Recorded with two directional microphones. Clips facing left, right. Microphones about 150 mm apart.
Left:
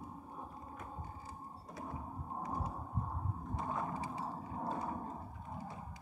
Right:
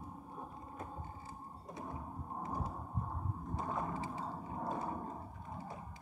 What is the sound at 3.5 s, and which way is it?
Vehicle, 25° right (ahead or behind).